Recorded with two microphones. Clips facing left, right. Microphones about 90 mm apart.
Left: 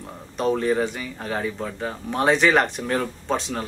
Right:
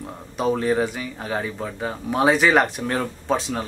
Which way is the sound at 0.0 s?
5° right (ahead or behind).